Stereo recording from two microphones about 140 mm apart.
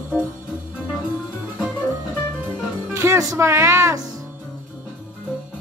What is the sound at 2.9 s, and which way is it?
Speech, 20° right (ahead or behind).